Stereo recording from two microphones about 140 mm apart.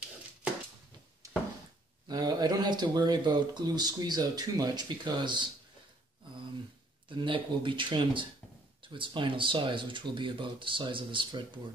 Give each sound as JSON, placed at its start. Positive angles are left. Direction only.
{"t": 1.2, "sound": "a sound", "side_deg": -25}
{"t": 2.0, "sound": "speech", "side_deg": -30}
{"t": 7.1, "sound": "speech", "side_deg": -35}